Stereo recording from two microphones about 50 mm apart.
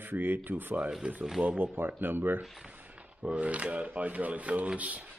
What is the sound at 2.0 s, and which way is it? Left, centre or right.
Speech, right.